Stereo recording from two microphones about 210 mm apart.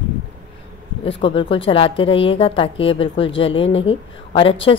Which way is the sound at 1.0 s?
25° left (ahead or behind).